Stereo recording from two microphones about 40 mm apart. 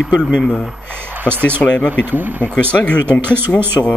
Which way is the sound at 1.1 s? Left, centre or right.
Right.